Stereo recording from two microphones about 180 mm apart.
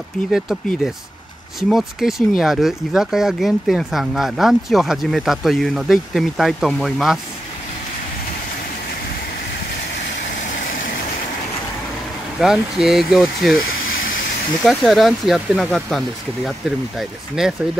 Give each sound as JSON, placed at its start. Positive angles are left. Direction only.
{"t": 0.3, "sound": "speech", "side_deg": 0}
{"t": 10.4, "sound": "vehicle", "side_deg": 50}
{"t": 12.4, "sound": "speech", "side_deg": -5}
{"t": 14.6, "sound": "speech", "side_deg": 0}
{"t": 17.4, "sound": "speech", "side_deg": 0}